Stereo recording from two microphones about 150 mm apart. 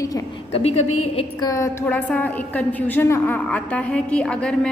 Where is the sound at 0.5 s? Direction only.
45° left (ahead or behind).